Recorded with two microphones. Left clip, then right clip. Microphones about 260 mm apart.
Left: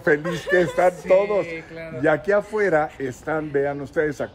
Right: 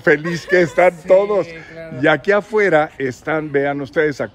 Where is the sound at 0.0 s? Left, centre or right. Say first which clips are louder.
Right 5 dB; right.